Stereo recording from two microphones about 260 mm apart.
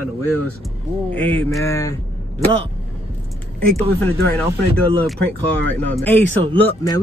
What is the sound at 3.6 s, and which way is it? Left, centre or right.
Speech, right.